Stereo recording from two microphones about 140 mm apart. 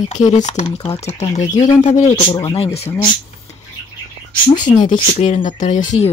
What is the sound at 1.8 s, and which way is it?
Speech, 50° left (ahead or behind).